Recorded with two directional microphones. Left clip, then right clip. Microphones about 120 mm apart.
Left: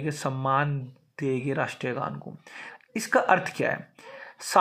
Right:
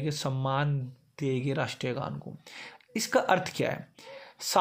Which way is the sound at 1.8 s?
10° right (ahead or behind).